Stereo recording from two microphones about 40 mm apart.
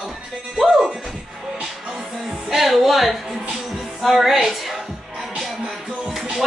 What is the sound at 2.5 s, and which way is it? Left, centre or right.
Music, centre.